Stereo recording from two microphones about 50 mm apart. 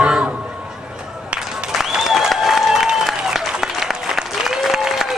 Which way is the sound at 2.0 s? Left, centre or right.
Centre.